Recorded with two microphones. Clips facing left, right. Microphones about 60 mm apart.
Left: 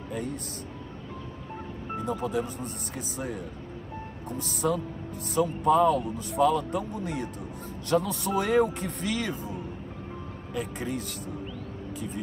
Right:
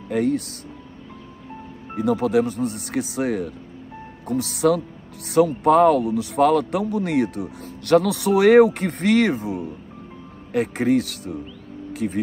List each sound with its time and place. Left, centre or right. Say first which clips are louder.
0.1 s speech: right 13 dB; right
2.0 s a man's voice: right 10 dB; right
11.9 s music: right 11 dB; right